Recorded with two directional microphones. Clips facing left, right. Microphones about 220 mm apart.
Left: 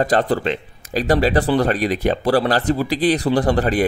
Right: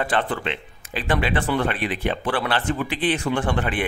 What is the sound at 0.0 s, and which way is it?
Speech, 40° left (ahead or behind).